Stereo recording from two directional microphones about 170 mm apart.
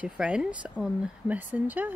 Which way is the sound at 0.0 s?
5° right (ahead or behind).